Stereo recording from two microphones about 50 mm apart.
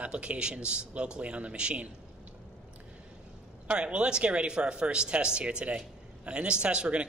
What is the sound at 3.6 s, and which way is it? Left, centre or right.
Speech, right.